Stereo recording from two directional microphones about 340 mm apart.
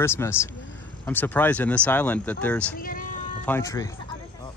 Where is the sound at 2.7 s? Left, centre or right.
Left.